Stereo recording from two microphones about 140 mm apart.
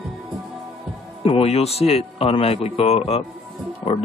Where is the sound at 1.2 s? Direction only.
45° left (ahead or behind).